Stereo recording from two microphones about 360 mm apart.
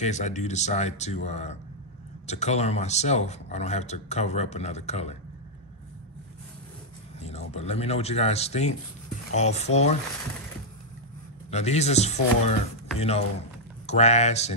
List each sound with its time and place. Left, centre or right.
0.0 s speech: centre
7.2 s speech: centre
11.5 s speech: centre